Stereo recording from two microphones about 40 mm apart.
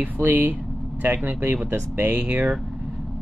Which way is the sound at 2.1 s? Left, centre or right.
Right.